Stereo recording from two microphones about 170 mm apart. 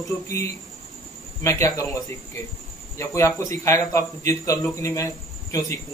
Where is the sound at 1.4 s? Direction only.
20° left (ahead or behind).